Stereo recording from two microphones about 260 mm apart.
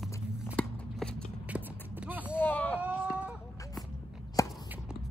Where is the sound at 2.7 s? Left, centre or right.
Centre.